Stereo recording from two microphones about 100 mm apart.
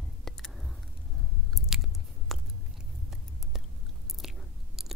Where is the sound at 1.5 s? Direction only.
Centre (ahead or behind).